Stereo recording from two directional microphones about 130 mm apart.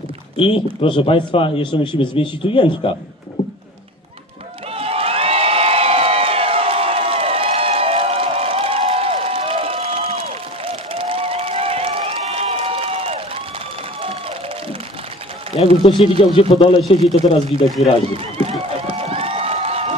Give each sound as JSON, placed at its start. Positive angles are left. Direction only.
{"t": 0.4, "sound": "speech", "side_deg": 40}
{"t": 4.7, "sound": "crowd", "side_deg": -50}
{"t": 15.5, "sound": "a sound", "side_deg": 45}
{"t": 16.0, "sound": "speech", "side_deg": 45}
{"t": 18.1, "sound": "run", "side_deg": -50}